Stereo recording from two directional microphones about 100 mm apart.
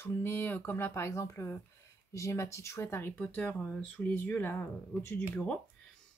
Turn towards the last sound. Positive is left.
turn(degrees=10)  # may be behind; listen again after turning